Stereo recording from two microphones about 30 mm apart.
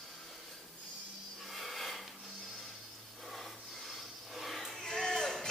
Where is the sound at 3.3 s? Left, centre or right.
Centre.